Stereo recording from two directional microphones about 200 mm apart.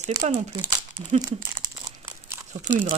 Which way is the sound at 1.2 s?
15° right (ahead or behind).